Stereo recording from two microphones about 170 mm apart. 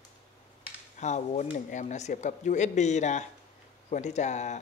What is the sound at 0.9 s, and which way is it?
Speech, 45° left (ahead or behind).